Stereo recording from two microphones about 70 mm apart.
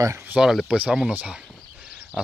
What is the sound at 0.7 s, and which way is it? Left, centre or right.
Speech, centre.